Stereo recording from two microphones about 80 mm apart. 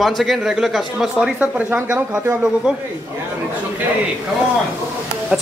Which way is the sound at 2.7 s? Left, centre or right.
Centre.